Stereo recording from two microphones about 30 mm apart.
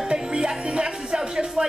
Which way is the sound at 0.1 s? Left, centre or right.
Right.